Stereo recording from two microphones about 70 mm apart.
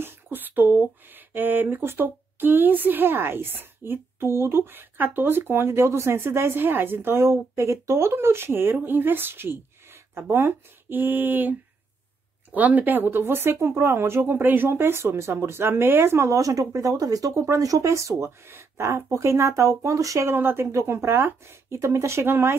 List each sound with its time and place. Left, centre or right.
0.0 s speech: right
16.3 s speech: right
20.3 s speech: right
20.7 s speech: right